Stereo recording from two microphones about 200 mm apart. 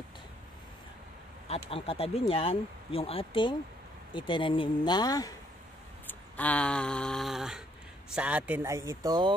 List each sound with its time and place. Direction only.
1.5 s speech: 30° left (ahead or behind)
6.0 s a sound: 10° left (ahead or behind)
8.1 s speech: 5° right (ahead or behind)